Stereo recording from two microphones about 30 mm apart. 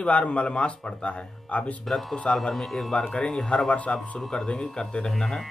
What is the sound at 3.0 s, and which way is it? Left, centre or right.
Speech, centre.